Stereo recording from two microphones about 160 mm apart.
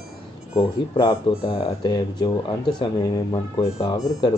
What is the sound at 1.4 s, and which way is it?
Speech, 35° left (ahead or behind).